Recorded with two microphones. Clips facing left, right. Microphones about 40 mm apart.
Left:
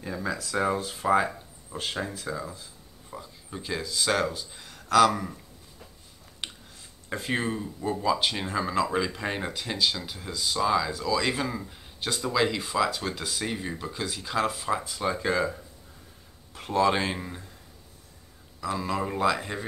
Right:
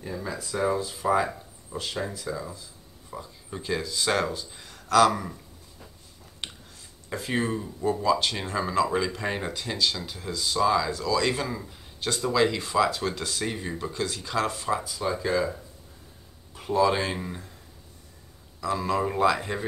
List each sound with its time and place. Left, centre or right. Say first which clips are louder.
0.7 s speech: right 2 dB; left
1.7 s speech: right 1 dB; left
2.2 s speech: even; centre
3.1 s speech: right 2 dB; centre
7.2 s speech: right 1 dB; left
7.4 s speech: right 3 dB; centre
14.9 s speech: even; left
16.5 s a sound: right 1 dB; left
16.8 s speech: even; centre
17.1 s speech: right 1 dB; centre
18.6 s speech: right 3 dB; centre